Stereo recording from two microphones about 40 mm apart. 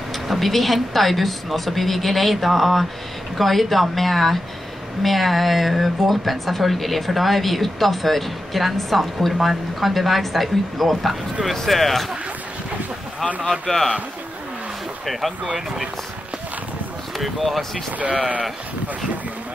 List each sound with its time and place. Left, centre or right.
0.3 s speech: centre
13.4 s speech: centre
15.0 s speech: centre
17.2 s speech: centre